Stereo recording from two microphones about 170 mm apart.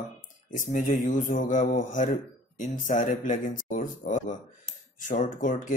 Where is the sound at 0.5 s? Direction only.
50° left (ahead or behind).